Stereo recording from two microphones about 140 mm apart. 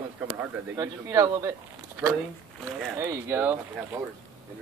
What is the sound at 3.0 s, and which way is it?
A man's voice, 20° right (ahead or behind).